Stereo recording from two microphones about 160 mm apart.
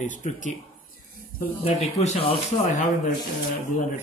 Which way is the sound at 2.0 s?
40° left (ahead or behind).